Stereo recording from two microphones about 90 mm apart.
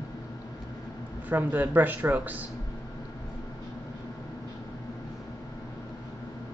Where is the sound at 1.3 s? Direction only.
20° right (ahead or behind).